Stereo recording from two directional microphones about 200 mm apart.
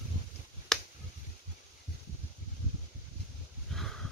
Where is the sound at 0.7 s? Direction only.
Centre (ahead or behind).